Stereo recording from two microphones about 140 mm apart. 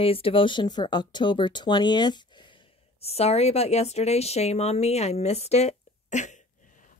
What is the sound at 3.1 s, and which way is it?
A woman's voice, 45° left (ahead or behind).